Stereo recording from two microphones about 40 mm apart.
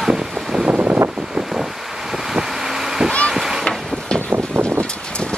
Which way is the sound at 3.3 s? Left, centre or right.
Centre.